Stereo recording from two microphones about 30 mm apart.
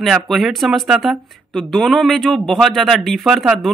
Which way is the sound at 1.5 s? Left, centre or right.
Centre.